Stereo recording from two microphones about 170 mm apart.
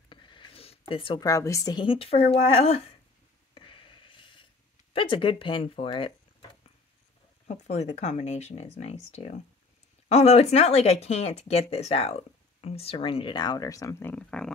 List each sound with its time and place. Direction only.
0.1 s a woman's voice: 30° left (ahead or behind)
3.5 s a sound: 30° left (ahead or behind)
4.9 s speech: 30° left (ahead or behind)
7.4 s speech: 40° left (ahead or behind); by 14.5 s 5° left (ahead or behind)